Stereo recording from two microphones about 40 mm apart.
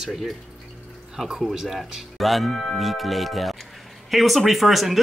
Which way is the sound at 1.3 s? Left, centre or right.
Centre.